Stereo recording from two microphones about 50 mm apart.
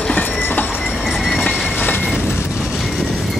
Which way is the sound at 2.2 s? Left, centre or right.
Left.